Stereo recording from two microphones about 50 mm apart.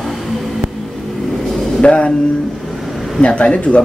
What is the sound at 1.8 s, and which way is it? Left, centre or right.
Speech, centre.